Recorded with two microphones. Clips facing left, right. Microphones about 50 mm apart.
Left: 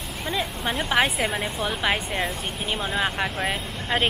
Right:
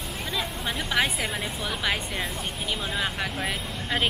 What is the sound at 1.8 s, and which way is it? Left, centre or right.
Speech, centre.